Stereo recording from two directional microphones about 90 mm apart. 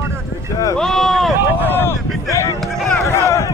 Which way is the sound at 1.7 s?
20° left (ahead or behind).